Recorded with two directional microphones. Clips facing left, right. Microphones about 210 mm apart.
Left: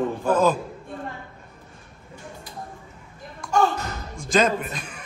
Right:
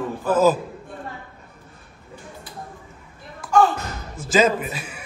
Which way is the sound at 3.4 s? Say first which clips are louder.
Right 4 dB; 5° right (ahead or behind).